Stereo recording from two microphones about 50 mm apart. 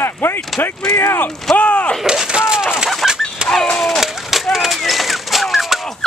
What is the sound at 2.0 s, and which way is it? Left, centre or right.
Speech, centre.